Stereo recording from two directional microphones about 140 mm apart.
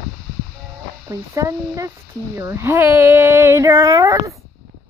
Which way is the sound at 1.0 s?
25° right (ahead or behind).